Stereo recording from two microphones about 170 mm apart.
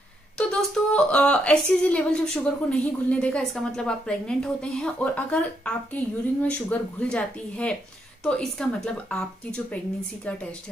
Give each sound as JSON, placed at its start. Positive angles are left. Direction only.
{"t": 0.4, "sound": "a woman's voice", "side_deg": 5}